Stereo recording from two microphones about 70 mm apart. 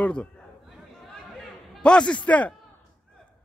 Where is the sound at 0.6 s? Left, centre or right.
Centre.